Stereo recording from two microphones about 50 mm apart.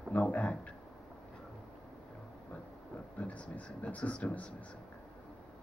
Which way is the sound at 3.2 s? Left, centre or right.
Left.